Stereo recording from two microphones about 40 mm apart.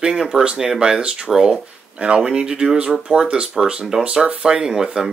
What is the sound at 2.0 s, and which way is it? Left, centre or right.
Speech, right.